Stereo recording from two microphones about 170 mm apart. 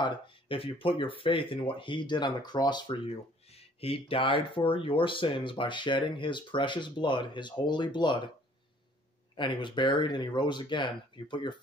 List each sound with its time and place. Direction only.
0.0 s speech: 30° left (ahead or behind)
9.4 s speech: 30° left (ahead or behind)